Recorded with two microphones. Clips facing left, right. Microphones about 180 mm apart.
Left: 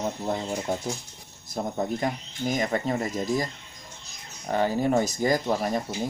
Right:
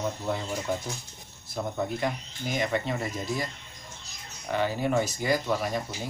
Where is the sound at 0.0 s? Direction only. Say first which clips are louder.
Left 2 dB; 35° left (ahead or behind).